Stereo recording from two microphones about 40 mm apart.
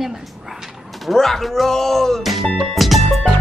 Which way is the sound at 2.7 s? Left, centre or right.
Centre.